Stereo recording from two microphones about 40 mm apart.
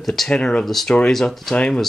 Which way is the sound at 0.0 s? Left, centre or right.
Centre.